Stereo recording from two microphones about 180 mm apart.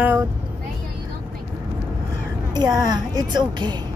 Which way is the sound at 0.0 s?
10° right (ahead or behind).